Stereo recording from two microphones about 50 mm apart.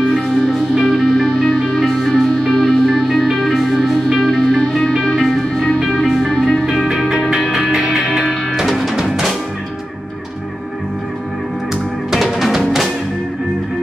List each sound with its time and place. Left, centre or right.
0.8 s music: centre
7.5 s music: centre
12.1 s music: centre